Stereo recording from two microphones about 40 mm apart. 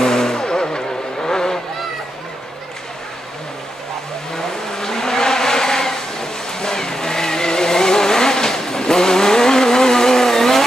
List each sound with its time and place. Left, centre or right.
0.0 s vehicle: centre
4.4 s vehicle: centre